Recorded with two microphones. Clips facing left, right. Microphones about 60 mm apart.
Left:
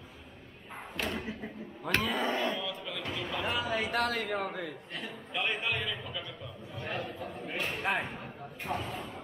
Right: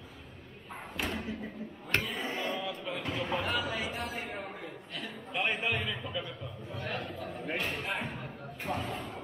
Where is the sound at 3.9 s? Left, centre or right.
Left.